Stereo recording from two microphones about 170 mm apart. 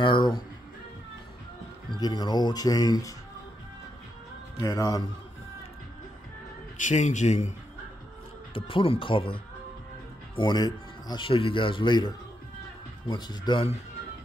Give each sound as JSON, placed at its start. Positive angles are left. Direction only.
{"t": 0.0, "sound": "music", "side_deg": 25}
{"t": 1.9, "sound": "speech", "side_deg": 25}
{"t": 4.6, "sound": "speech", "side_deg": 20}
{"t": 6.8, "sound": "speech", "side_deg": 45}
{"t": 8.5, "sound": "speech", "side_deg": 30}
{"t": 13.1, "sound": "speech", "side_deg": 25}